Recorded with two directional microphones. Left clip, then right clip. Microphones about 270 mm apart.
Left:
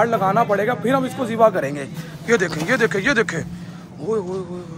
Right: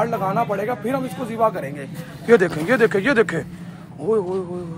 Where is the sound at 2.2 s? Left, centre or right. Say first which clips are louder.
Right 3 dB; centre.